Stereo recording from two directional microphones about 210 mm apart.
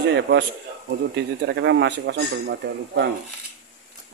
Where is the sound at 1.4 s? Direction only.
55° right (ahead or behind).